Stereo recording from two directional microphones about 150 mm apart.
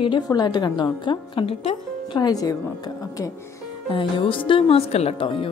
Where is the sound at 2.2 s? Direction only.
25° left (ahead or behind).